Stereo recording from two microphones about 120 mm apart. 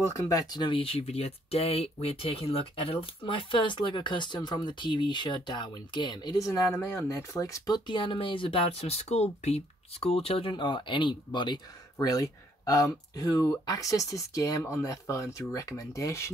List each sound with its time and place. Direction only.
0.1 s speech: 30° left (ahead or behind); by 10.5 s 55° left (ahead or behind)
10.5 s speech: 40° left (ahead or behind); by 16.3 s 25° left (ahead or behind)